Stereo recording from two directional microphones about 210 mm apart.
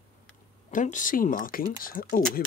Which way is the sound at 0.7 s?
35° left (ahead or behind).